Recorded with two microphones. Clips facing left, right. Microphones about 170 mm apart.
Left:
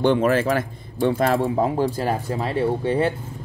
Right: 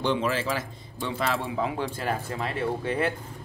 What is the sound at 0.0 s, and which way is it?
Speech, 55° left (ahead or behind).